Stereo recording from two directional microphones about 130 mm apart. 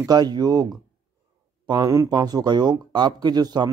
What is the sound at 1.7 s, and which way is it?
Speech, 25° right (ahead or behind).